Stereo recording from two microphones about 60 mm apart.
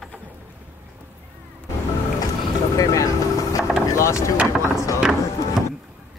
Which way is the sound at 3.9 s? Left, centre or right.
Left.